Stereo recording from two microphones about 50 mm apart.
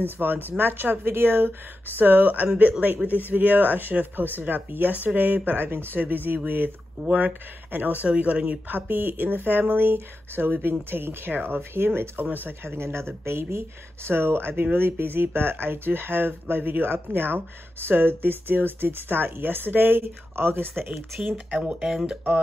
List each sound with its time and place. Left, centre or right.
0.2 s speech: right
8.6 s speech: right
21.5 s speech: centre